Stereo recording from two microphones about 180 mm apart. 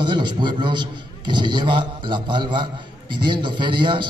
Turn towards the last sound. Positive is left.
turn(degrees=-25)  # may be behind; listen again after turning